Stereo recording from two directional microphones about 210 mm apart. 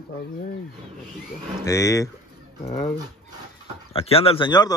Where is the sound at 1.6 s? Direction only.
15° left (ahead or behind).